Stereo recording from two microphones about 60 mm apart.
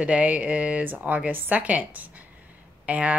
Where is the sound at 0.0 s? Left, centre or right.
Right.